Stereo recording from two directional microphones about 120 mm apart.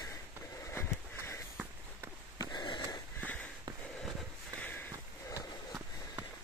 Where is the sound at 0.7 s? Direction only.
20° left (ahead or behind).